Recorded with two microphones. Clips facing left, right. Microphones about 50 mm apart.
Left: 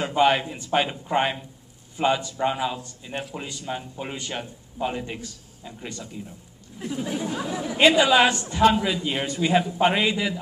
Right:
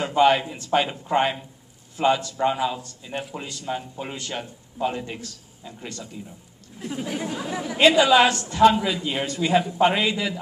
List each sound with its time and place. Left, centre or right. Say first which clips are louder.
0.0 s a man's voice: right 2 dB; centre
4.0 s a man's voice: even; centre
7.1 s speech: even; right
7.7 s a man's voice: right 1 dB; centre